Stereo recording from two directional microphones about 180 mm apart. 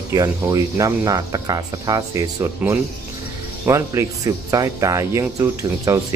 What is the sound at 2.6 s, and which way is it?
Speech, 10° right (ahead or behind).